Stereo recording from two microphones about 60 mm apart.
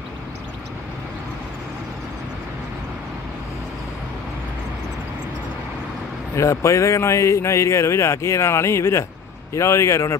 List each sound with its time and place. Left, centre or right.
6.3 s a man's voice: left